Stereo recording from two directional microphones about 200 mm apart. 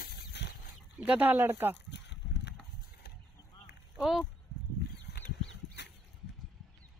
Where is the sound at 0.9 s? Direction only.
10° right (ahead or behind).